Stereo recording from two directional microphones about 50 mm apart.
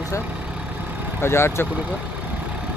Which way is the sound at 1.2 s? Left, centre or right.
Left.